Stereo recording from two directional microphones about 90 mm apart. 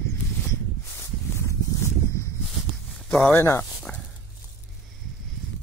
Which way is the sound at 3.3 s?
30° left (ahead or behind).